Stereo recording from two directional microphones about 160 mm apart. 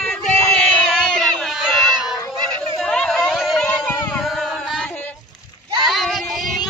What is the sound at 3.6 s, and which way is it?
Child singing, 5° left (ahead or behind).